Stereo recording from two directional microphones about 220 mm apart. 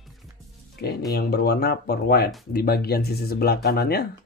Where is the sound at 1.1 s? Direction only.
45° left (ahead or behind).